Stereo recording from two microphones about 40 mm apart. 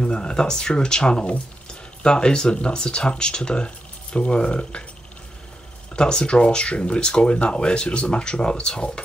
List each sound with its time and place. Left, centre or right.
0.0 s speech: left
5.9 s speech: left